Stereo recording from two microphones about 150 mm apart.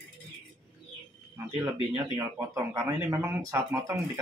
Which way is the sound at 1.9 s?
15° right (ahead or behind).